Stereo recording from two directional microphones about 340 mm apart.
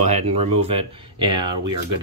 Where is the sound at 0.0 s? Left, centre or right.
Centre.